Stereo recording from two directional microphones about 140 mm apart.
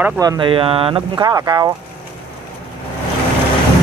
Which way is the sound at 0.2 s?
25° right (ahead or behind).